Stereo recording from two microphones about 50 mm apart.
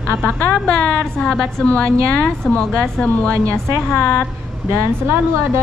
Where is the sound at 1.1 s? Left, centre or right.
Centre.